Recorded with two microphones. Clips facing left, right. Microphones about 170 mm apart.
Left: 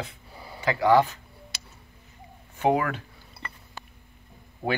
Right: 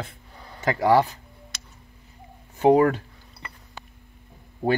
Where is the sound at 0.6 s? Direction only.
40° right (ahead or behind).